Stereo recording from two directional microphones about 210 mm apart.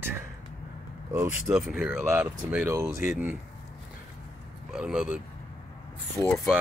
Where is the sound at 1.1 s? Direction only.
15° right (ahead or behind).